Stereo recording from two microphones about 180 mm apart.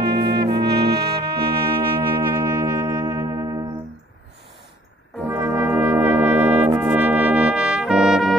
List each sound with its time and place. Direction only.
0.0 s trumpet: 65° right (ahead or behind)
1.4 s music: 30° right (ahead or behind)
5.3 s brass instrument: 10° right (ahead or behind)